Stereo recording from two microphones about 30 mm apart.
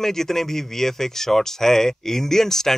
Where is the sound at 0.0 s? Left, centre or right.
Centre.